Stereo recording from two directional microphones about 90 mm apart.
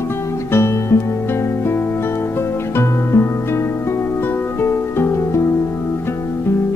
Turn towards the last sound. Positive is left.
turn(degrees=30)  # may be behind; listen again after turning